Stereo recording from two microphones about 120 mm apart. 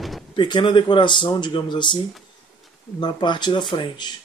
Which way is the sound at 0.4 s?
40° left (ahead or behind).